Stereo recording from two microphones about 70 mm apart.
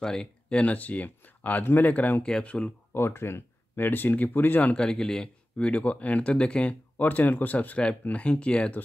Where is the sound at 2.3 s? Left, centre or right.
Centre.